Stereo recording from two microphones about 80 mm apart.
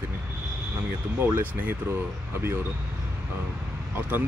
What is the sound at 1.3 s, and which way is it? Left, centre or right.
Speech, right.